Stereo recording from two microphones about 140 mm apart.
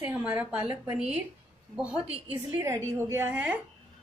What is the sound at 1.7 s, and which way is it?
A woman's voice, 5° right (ahead or behind).